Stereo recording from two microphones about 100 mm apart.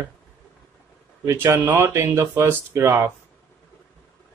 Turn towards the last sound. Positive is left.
turn(degrees=-25)  # may be behind; listen again after turning